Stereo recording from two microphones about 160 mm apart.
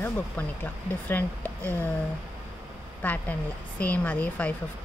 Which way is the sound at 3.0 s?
10° left (ahead or behind).